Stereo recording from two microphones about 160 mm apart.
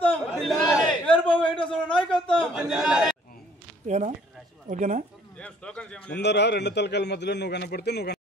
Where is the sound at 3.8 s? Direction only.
50° right (ahead or behind).